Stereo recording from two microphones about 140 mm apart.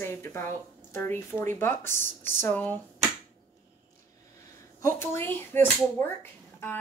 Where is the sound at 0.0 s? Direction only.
15° left (ahead or behind).